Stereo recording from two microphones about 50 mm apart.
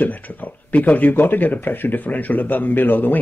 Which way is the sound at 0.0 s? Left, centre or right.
Left.